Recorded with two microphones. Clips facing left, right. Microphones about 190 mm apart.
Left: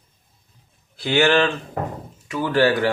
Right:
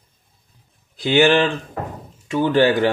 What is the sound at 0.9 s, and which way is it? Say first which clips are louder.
Speech: right 3 dB; 15° right (ahead or behind).